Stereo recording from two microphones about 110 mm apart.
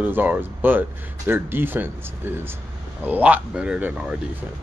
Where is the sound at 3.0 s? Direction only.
15° right (ahead or behind).